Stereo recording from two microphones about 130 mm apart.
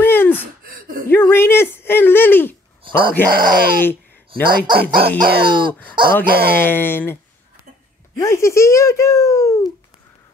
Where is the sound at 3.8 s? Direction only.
15° left (ahead or behind).